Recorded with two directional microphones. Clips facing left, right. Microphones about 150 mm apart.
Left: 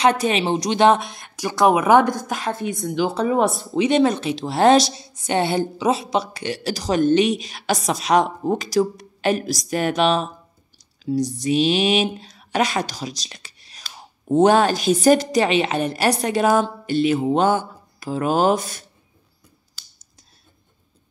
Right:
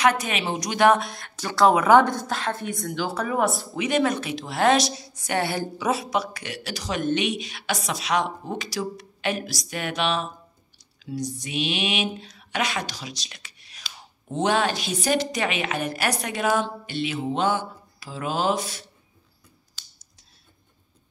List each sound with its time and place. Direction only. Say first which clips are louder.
0.0 s speech: left 4 dB; 30° left (ahead or behind)
11.1 s a sound: left 9 dB; 40° left (ahead or behind)
11.4 s a woman's voice: left 10 dB; 35° left (ahead or behind)